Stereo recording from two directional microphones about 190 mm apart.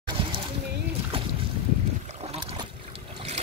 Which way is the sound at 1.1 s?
30° right (ahead or behind).